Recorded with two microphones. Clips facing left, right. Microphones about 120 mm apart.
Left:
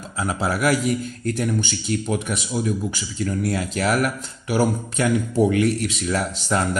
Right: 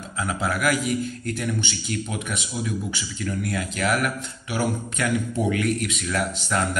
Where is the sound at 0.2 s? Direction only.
35° left (ahead or behind).